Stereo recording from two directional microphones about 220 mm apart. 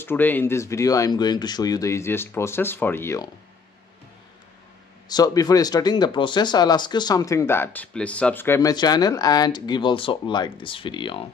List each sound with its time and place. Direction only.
0.0 s speech: 10° left (ahead or behind)
5.0 s speech: 15° left (ahead or behind)